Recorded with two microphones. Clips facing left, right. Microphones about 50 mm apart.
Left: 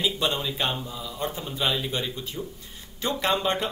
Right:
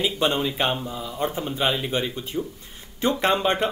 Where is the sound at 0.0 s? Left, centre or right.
Right.